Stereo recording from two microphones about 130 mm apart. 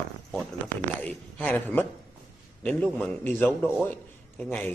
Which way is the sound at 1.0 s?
15° left (ahead or behind).